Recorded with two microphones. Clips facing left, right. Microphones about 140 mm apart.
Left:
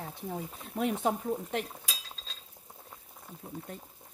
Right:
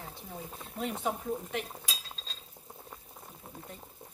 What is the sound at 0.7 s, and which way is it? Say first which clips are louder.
Speech: left 4 dB; 50° left (ahead or behind).